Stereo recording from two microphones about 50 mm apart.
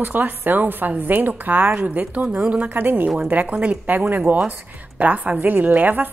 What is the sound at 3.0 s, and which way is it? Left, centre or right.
A woman's voice, right.